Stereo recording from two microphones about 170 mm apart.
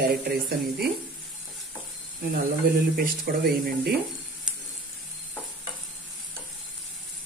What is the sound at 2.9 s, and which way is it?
Speech, 65° right (ahead or behind).